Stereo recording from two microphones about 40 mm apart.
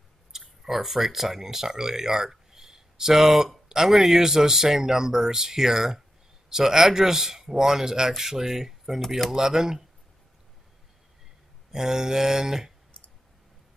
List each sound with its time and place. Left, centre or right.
0.3 s speech: centre
11.7 s speech: centre